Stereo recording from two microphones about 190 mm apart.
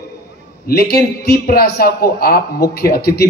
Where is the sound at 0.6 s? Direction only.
55° left (ahead or behind).